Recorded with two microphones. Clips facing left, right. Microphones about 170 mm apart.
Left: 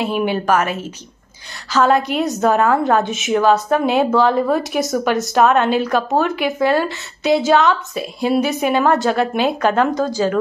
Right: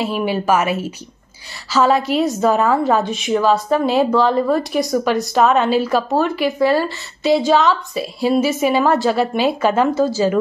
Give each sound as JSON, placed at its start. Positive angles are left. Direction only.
{"t": 0.0, "sound": "a woman's voice", "side_deg": 0}